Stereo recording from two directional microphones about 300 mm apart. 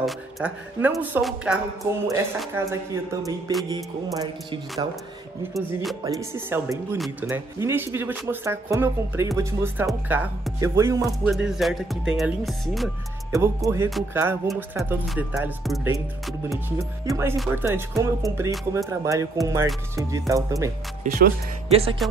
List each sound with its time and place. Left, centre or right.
0.0 s speech: centre
21.0 s speech: right